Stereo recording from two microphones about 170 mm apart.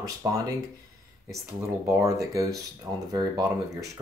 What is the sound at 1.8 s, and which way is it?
Speech, 20° right (ahead or behind).